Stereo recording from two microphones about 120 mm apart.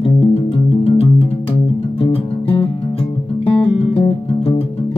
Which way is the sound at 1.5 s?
50° left (ahead or behind).